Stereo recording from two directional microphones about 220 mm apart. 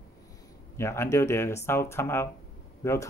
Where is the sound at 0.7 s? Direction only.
10° left (ahead or behind).